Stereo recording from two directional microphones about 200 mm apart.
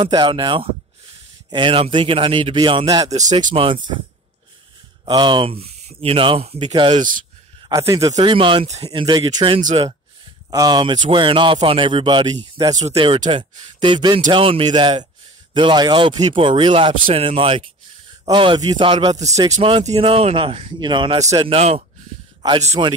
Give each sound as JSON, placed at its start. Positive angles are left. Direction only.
{"t": 0.0, "sound": "speech", "side_deg": -20}
{"t": 5.0, "sound": "speech", "side_deg": -25}
{"t": 7.0, "sound": "speech", "side_deg": -40}
{"t": 7.6, "sound": "speech", "side_deg": -15}